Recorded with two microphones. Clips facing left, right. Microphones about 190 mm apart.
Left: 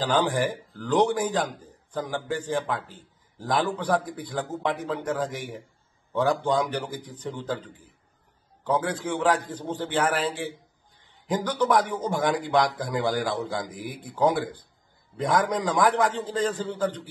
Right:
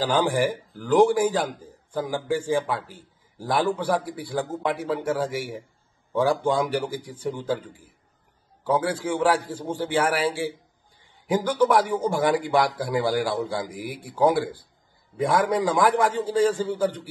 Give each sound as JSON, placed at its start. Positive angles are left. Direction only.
{"t": 0.0, "sound": "speech", "side_deg": -10}